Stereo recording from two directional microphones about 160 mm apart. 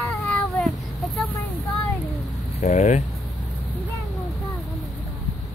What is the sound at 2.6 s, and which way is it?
Speech, 45° left (ahead or behind).